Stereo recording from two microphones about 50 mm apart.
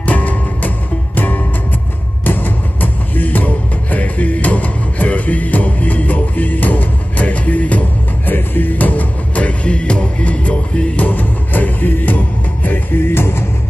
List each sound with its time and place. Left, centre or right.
0.0 s music: left
8.3 s music: left
11.0 s music: left